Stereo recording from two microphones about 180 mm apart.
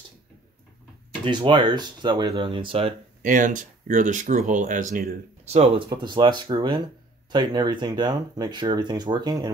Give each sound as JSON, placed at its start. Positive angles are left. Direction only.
{"t": 1.2, "sound": "speech", "side_deg": -25}
{"t": 3.2, "sound": "speech", "side_deg": -45}
{"t": 5.5, "sound": "speech", "side_deg": -35}
{"t": 5.9, "sound": "speech", "side_deg": -25}